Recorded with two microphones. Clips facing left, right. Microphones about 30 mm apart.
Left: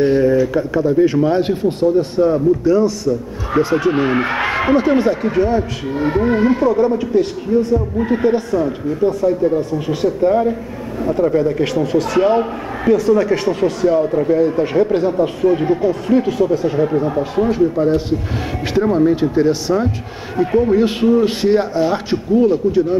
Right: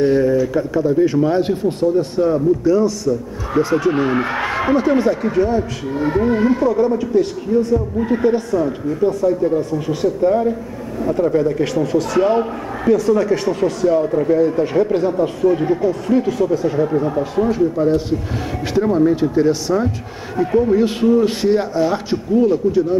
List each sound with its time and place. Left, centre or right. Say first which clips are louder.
0.0 s speech: left 1 dB; centre